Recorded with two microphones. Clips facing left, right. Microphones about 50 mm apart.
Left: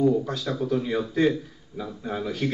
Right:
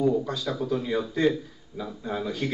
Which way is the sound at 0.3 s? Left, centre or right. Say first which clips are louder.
Left 1 dB; left.